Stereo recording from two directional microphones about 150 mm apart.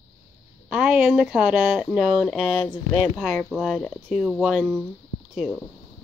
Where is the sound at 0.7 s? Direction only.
5° right (ahead or behind).